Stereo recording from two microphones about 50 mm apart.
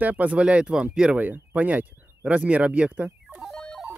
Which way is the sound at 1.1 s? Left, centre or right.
Right.